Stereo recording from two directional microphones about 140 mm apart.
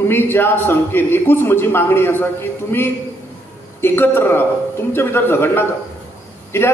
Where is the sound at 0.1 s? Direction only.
15° left (ahead or behind).